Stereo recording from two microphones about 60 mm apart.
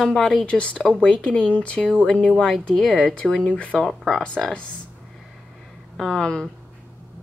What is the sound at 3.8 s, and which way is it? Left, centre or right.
Speech, centre.